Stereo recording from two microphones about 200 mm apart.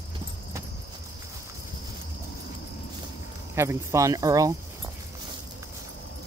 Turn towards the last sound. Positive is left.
turn(degrees=-15)  # may be behind; listen again after turning